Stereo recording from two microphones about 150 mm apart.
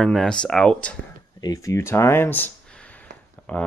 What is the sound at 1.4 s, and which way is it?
Speech, 20° left (ahead or behind).